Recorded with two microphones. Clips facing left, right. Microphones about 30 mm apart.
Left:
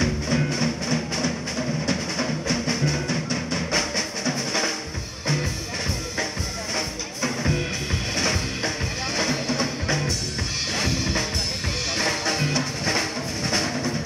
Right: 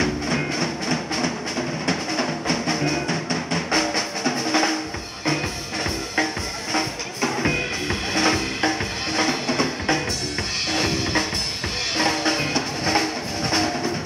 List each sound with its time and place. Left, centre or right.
0.0 s music: right
2.5 s drum: right
7.3 s music: right
10.7 s drum kit: right
12.0 s music: centre